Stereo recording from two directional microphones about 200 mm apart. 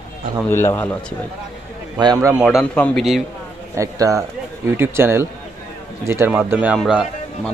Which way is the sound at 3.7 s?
15° right (ahead or behind).